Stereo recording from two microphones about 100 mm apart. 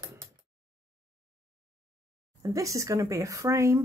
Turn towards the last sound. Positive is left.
turn(degrees=-30)  # may be behind; listen again after turning